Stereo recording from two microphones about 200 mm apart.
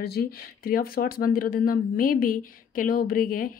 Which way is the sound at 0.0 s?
50° left (ahead or behind).